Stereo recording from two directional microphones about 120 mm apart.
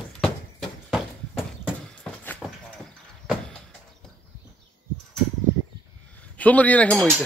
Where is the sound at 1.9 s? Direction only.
10° left (ahead or behind).